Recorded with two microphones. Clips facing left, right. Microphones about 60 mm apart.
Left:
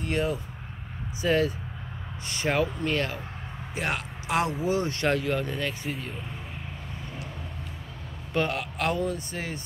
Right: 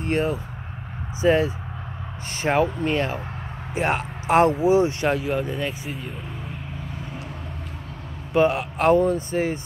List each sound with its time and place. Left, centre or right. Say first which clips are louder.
0.0 s speech: right 4 dB; right
4.6 s speech: right 8 dB; centre
5.9 s speech: right 1 dB; centre
8.3 s speech: right 8 dB; centre